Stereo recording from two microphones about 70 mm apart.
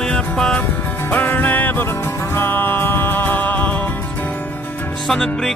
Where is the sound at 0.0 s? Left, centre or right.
Centre.